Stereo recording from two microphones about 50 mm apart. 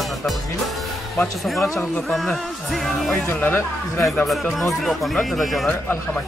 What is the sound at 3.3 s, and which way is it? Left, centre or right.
Speech, left.